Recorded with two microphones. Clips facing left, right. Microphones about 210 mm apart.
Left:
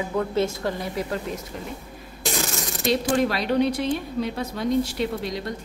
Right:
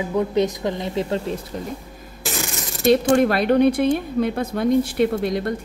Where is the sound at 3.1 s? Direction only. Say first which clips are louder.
Right 5 dB; 55° right (ahead or behind).